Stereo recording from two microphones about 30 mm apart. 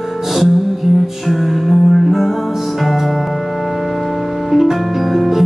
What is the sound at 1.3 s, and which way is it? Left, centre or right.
Music, centre.